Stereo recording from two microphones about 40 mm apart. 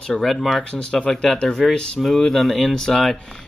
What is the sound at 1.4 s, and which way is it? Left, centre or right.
Speech, centre.